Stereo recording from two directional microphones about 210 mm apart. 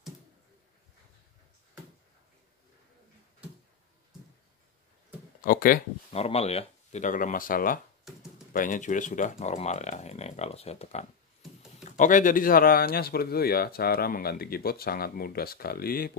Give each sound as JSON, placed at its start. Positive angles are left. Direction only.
{"t": 5.4, "sound": "speech", "side_deg": 45}
{"t": 6.1, "sound": "speech", "side_deg": 30}